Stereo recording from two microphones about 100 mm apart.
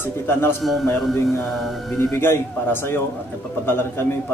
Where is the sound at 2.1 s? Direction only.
25° left (ahead or behind).